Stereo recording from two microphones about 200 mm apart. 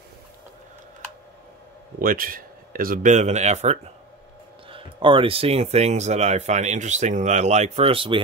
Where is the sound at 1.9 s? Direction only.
45° right (ahead or behind).